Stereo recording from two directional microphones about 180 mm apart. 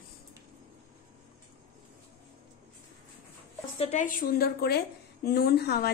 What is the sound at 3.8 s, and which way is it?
A woman's voice, 40° left (ahead or behind).